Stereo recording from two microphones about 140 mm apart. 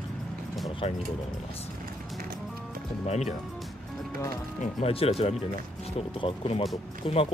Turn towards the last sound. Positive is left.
turn(degrees=40)  # may be behind; listen again after turning